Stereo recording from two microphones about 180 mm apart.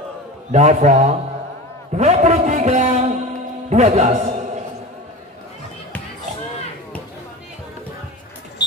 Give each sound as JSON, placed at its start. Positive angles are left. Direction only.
{"t": 0.5, "sound": "a man's voice", "side_deg": -40}